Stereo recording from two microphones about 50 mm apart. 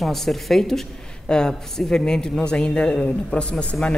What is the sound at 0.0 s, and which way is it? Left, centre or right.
A woman's voice, centre.